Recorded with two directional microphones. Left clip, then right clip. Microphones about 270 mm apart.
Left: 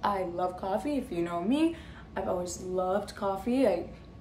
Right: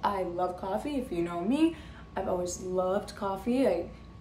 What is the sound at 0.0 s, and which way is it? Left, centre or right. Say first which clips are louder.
A woman's voice: even; centre.